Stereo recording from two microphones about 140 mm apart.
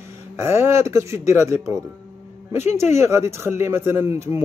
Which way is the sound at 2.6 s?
55° left (ahead or behind).